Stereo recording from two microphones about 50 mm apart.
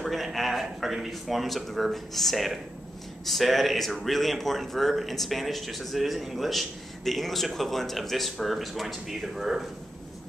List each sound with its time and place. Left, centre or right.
0.0 s a man's voice: centre